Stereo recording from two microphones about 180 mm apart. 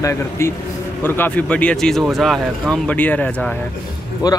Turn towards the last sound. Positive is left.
turn(degrees=20)  # may be behind; listen again after turning